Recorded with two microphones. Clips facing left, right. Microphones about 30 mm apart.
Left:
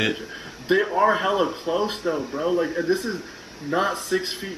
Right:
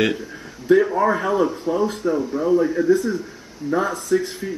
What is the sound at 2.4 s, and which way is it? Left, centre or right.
Speech, left.